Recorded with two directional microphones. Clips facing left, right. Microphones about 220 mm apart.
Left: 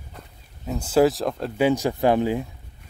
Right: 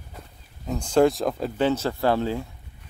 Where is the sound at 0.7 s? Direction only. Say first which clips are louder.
Left 1 dB; 5° left (ahead or behind).